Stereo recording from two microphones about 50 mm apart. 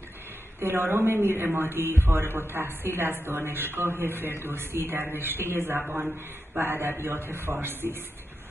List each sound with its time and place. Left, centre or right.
0.6 s a man's voice: right